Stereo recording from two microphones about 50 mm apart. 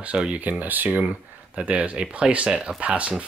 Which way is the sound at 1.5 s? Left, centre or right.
Right.